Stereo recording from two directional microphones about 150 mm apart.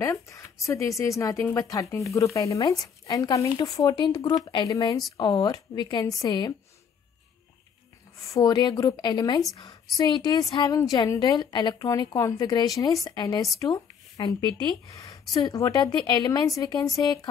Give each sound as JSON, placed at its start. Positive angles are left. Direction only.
{"t": 0.0, "sound": "speech", "side_deg": 20}
{"t": 8.3, "sound": "speech", "side_deg": 25}
{"t": 13.6, "sound": "a sound", "side_deg": 25}
{"t": 14.6, "sound": "speech", "side_deg": 20}